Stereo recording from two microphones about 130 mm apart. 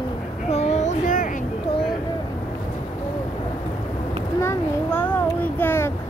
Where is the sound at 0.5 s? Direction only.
55° left (ahead or behind); by 1.4 s 85° left.